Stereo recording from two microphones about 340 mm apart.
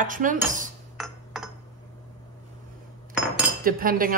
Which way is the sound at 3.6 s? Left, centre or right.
Right.